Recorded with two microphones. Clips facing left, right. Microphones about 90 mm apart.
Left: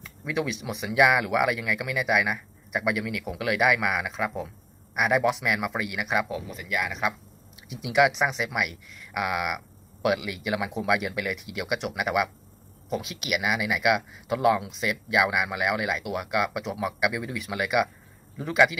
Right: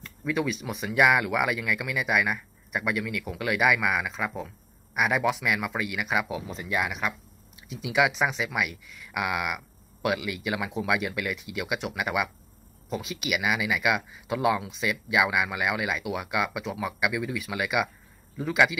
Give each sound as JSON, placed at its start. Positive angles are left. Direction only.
{"t": 0.0, "sound": "speech", "side_deg": 5}
{"t": 6.2, "sound": "speech", "side_deg": -15}
{"t": 6.5, "sound": "speech", "side_deg": -25}
{"t": 7.7, "sound": "speech", "side_deg": 0}